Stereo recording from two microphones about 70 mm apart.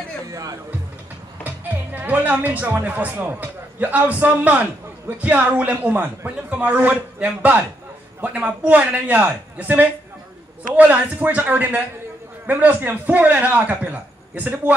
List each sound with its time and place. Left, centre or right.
0.3 s speech: right
1.4 s speech: right